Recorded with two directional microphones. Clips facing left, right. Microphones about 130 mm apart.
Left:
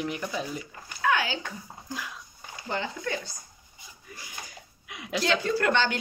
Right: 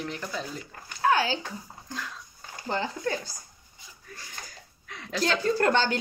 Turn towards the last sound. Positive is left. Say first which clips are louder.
# right 1 dB
turn(degrees=-35)  # may be behind; listen again after turning